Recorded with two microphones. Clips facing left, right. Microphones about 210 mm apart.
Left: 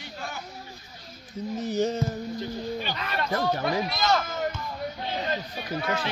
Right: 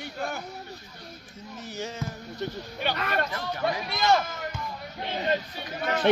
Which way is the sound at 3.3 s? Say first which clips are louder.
Left 7 dB; 40° left (ahead or behind).